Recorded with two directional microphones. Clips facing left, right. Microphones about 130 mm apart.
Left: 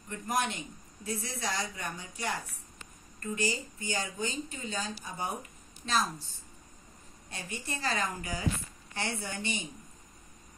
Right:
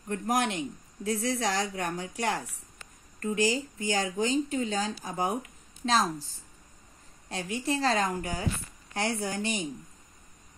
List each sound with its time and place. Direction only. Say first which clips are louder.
0.1 s speech: right 4 dB; 85° right
7.2 s a woman's voice: right 9 dB; 90° right; by 9.7 s 70° right (ahead or behind)